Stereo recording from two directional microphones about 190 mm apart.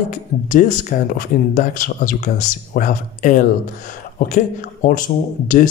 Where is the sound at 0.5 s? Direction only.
45° left (ahead or behind).